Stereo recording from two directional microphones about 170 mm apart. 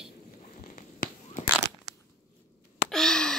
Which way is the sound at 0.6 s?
55° left (ahead or behind).